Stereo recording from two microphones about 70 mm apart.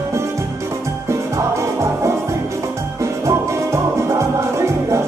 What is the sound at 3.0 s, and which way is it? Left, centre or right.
Music, right.